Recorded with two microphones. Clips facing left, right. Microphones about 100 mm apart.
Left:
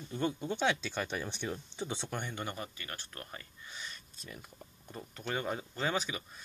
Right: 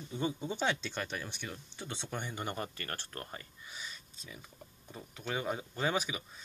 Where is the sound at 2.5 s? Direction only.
45° right (ahead or behind).